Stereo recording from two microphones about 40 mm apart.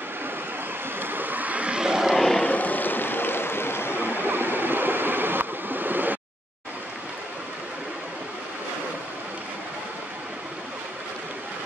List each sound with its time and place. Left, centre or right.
0.9 s vehicle: right
1.8 s vehicle: centre
2.1 s vehicle: centre
2.4 s boat: left
4.1 s stream: right